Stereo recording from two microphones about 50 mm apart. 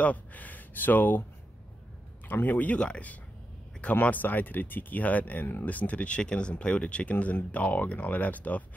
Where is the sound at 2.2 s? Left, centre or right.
Left.